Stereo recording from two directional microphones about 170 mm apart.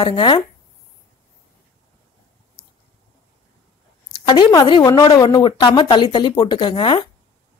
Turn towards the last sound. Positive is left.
turn(degrees=30)  # may be behind; listen again after turning